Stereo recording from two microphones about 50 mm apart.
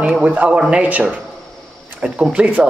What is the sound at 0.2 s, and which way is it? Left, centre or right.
A man's voice, right.